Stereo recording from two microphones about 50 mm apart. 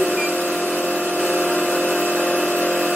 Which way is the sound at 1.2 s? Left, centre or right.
Left.